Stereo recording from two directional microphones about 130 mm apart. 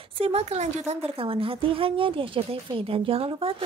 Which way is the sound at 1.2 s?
45° right (ahead or behind).